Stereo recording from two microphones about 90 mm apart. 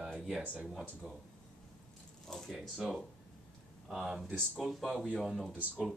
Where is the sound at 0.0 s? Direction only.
5° right (ahead or behind).